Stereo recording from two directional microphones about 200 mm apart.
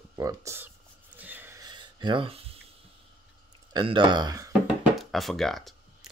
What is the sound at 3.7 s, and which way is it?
Speech, 25° right (ahead or behind).